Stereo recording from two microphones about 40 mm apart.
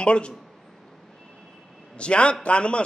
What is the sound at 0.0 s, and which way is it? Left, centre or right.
Speech, left.